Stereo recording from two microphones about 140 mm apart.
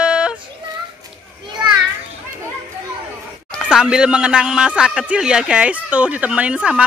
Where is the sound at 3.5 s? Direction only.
5° right (ahead or behind).